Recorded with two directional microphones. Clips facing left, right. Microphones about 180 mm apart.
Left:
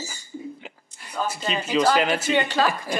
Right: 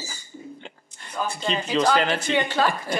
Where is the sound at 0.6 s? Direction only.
5° left (ahead or behind).